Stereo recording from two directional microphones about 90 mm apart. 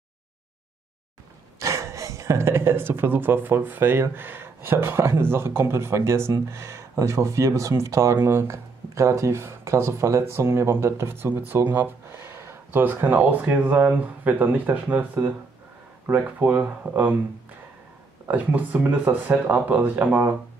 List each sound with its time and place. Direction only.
1.6 s speech: 35° right (ahead or behind); by 17.2 s 15° right (ahead or behind)
18.3 s speech: 15° right (ahead or behind)